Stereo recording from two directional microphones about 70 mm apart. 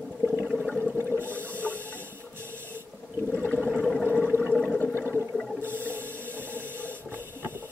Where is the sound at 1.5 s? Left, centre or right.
Left.